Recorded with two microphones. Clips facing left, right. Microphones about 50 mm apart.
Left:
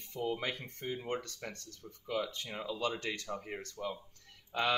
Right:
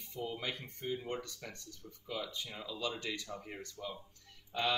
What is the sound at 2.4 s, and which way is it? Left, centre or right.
Speech, left.